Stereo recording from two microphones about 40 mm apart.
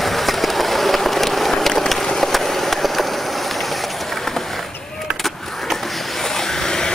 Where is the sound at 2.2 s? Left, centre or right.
Centre.